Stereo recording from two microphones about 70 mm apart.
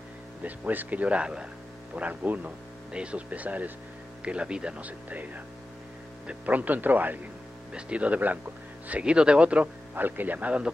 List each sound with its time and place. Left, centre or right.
0.4 s speech: right
2.0 s speech: right